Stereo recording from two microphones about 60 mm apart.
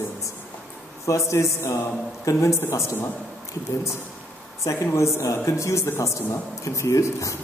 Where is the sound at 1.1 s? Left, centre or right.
Left.